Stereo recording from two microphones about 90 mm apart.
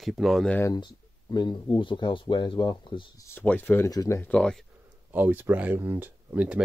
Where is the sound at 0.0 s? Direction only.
Centre (ahead or behind).